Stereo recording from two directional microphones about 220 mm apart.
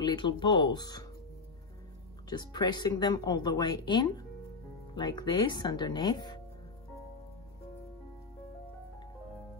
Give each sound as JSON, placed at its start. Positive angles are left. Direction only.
{"t": 0.0, "sound": "speech", "side_deg": 20}
{"t": 2.2, "sound": "speech", "side_deg": 20}